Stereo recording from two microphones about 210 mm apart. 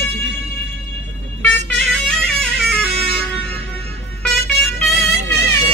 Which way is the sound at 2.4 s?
Centre (ahead or behind).